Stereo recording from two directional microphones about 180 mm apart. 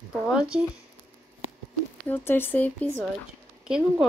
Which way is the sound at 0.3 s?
5° right (ahead or behind).